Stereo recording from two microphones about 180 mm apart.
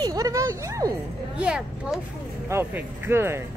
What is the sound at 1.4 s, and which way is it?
Speech, 5° right (ahead or behind).